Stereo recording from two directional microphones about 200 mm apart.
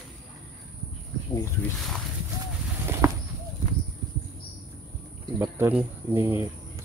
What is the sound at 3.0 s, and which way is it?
Horse, 15° right (ahead or behind).